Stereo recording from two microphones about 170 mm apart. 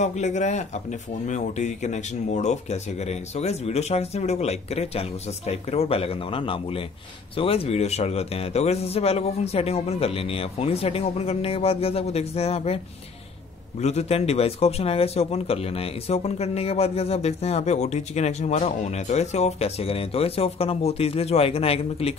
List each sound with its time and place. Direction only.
0.0 s a man's voice: 40° left (ahead or behind)